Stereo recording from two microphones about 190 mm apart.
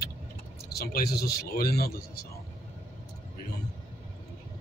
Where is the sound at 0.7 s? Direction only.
55° left (ahead or behind).